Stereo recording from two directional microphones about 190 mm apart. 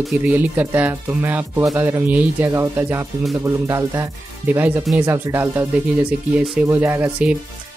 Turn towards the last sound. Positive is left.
turn(degrees=-5)  # may be behind; listen again after turning